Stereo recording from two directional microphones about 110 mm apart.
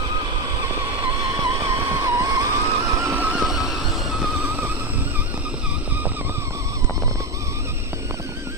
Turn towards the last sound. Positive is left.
turn(degrees=-20)  # may be behind; listen again after turning